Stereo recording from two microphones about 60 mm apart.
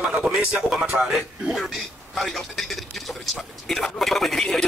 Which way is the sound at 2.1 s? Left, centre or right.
Centre.